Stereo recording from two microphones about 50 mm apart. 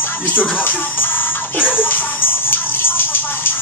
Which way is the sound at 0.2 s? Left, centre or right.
Left.